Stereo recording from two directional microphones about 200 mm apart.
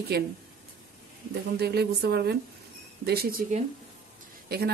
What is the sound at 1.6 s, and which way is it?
Speech, 55° right (ahead or behind).